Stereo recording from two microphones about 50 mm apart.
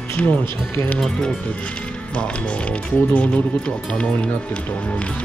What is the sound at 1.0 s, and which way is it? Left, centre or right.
Speech, centre.